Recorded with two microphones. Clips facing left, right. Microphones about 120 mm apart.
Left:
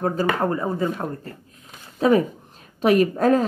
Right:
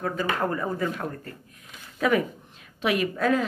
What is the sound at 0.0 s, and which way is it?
Speech, 35° left (ahead or behind).